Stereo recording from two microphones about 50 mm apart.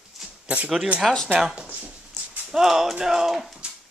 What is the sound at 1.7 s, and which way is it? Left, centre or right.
Speech, right.